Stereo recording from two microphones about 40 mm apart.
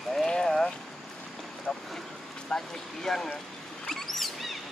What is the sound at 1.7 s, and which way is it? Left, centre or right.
Boat, centre.